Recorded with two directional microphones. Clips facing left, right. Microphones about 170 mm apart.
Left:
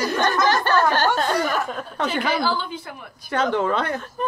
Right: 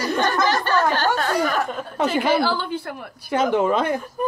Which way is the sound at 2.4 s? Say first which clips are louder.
Right 2 dB; 65° right (ahead or behind).